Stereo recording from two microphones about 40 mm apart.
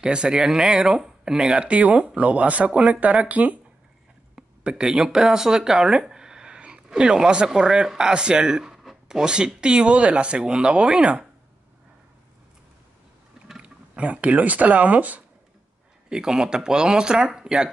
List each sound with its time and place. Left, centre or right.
0.0 s speech: right
1.7 s speech: right
4.4 s speech: right
13.6 s speech: right
16.1 s speech: centre